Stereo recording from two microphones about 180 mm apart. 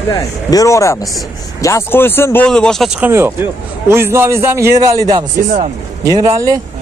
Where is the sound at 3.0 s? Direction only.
15° right (ahead or behind).